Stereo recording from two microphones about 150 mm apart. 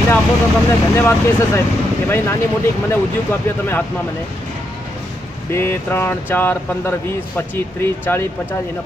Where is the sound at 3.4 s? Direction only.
15° left (ahead or behind).